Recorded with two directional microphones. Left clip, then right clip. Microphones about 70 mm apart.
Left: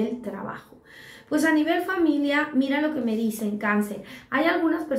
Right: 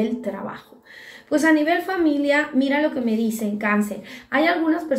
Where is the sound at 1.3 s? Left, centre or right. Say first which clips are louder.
Right 4 dB; left.